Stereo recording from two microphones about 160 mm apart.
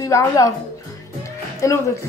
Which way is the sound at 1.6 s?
20° left (ahead or behind).